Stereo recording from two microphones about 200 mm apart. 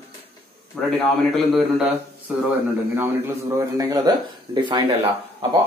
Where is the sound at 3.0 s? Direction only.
15° right (ahead or behind).